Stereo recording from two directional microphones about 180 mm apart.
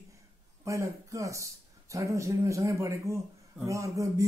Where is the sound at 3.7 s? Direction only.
15° right (ahead or behind).